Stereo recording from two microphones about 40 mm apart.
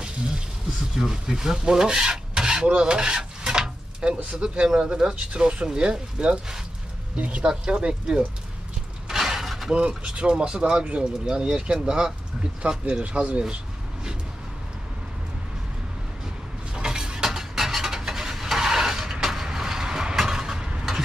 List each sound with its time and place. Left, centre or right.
0.9 s filing: centre
2.8 s a sound: right
4.6 s speech: centre
9.1 s mechanisms: centre
9.7 s speech: right
16.7 s a sound: centre
19.3 s vehicle: centre